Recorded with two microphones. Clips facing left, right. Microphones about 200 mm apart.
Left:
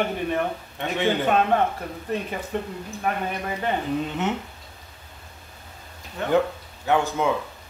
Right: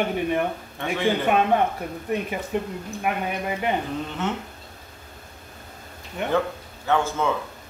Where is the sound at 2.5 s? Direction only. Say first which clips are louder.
Right 3 dB; 15° right (ahead or behind).